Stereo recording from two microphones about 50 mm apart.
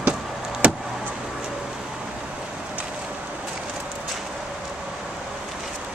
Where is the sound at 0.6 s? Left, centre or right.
Right.